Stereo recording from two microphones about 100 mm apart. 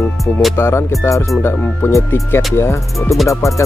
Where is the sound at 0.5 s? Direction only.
30° left (ahead or behind).